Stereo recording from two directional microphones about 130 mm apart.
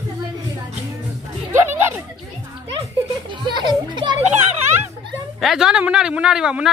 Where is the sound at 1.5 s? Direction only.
15° right (ahead or behind).